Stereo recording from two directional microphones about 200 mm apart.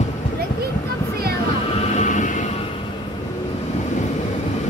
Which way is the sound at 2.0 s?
40° left (ahead or behind).